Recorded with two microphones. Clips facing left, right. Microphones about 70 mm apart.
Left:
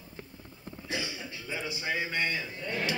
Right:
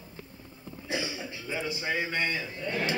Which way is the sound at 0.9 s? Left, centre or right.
Centre.